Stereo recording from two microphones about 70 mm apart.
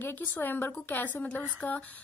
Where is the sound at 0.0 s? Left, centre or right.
Left.